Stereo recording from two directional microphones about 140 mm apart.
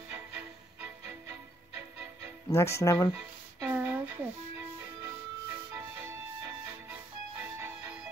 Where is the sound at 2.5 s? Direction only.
20° left (ahead or behind).